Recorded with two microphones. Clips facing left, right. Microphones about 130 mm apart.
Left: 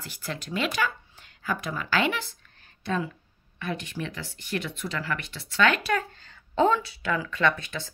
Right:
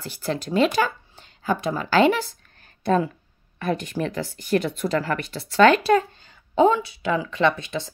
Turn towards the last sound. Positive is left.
turn(degrees=-20)  # may be behind; listen again after turning